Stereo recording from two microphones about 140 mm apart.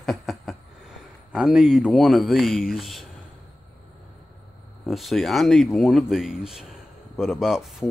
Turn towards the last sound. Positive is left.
turn(degrees=-5)  # may be behind; listen again after turning